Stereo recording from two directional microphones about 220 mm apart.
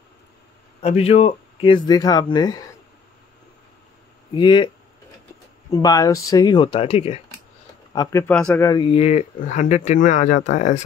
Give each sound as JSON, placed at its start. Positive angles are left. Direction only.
{"t": 0.8, "sound": "speech", "side_deg": 30}
{"t": 4.3, "sound": "speech", "side_deg": 20}
{"t": 5.7, "sound": "speech", "side_deg": 15}
{"t": 7.9, "sound": "speech", "side_deg": 15}
{"t": 8.6, "sound": "speech", "side_deg": 20}